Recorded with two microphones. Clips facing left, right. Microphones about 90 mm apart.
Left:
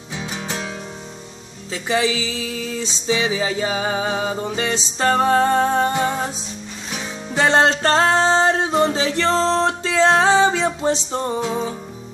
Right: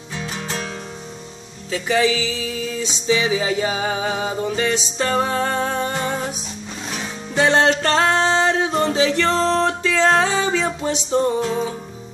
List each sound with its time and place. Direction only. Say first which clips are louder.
1.7 s music: right 2 dB; 30° left (ahead or behind)
7.3 s music: even; 30° left (ahead or behind)